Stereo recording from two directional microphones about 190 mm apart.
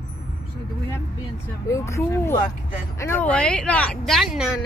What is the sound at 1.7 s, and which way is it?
Speech, 15° left (ahead or behind).